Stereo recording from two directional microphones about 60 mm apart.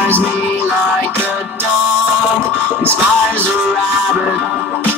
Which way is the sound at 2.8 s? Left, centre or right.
Right.